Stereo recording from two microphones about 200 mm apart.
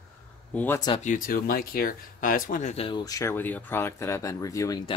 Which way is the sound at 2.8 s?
20° left (ahead or behind).